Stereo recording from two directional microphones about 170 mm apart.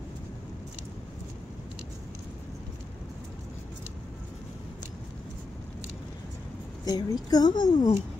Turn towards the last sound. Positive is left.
turn(degrees=25)  # may be behind; listen again after turning